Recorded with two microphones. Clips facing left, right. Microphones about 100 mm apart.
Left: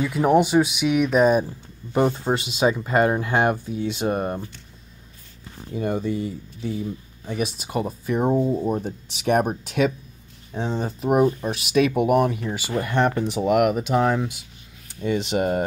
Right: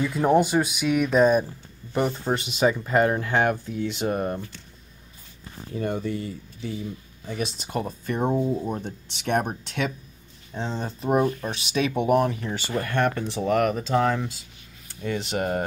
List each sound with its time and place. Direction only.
0.0 s speech: 10° left (ahead or behind)
6.0 s speech: 15° left (ahead or behind)